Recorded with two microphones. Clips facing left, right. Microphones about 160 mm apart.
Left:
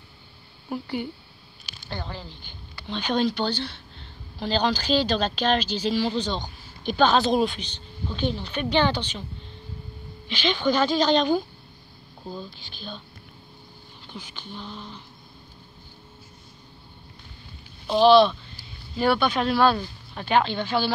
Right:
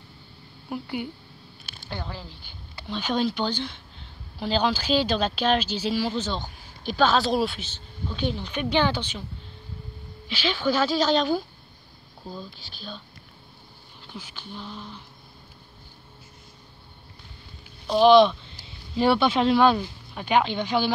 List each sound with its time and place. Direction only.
0.7 s speech: 10° right (ahead or behind)
10.2 s a woman's voice: 5° right (ahead or behind)
14.1 s a woman's voice: 5° right (ahead or behind)
17.9 s speech: 15° right (ahead or behind)